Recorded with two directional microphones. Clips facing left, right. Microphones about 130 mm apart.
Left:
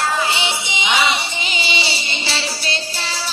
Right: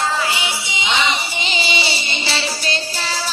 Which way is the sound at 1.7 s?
50° right (ahead or behind).